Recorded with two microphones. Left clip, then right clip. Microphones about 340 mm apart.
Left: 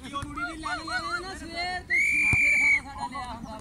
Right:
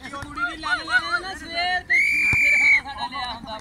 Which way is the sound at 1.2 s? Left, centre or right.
Right.